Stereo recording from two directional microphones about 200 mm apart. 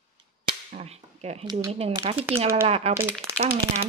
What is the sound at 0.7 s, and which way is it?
Speech, 35° right (ahead or behind).